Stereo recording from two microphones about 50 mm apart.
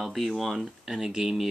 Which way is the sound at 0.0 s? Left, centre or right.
Centre.